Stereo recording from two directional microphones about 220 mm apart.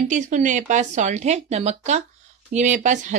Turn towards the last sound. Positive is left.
turn(degrees=-35)  # may be behind; listen again after turning